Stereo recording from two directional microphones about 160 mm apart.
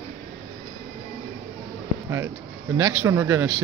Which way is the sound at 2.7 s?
20° right (ahead or behind).